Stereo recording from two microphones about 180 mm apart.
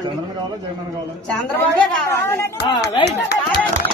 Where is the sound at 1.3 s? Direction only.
10° left (ahead or behind).